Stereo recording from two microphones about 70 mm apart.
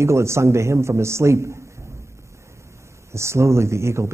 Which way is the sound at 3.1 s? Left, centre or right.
Right.